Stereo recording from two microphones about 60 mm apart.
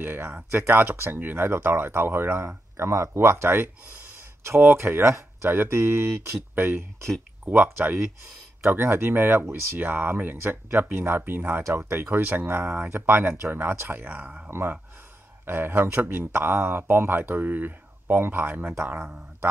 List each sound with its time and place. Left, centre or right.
0.0 s speech: right
14.0 s speech: right
15.4 s speech: right